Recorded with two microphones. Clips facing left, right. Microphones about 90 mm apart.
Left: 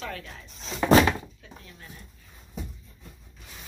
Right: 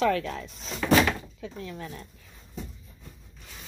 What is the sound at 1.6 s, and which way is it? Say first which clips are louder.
Speech: right 10 dB; 90° right.